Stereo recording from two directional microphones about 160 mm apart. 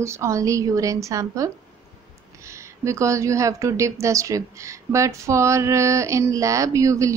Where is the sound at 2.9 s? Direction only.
20° right (ahead or behind).